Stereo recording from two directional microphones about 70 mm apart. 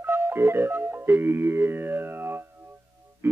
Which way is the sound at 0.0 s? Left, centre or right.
Right.